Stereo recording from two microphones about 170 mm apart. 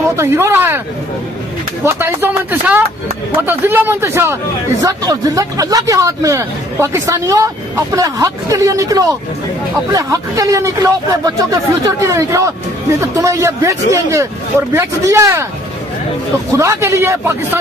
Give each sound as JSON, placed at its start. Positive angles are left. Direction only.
{"t": 0.1, "sound": "speech", "side_deg": -15}
{"t": 1.9, "sound": "a man's voice", "side_deg": -15}
{"t": 16.5, "sound": "a man's voice", "side_deg": -15}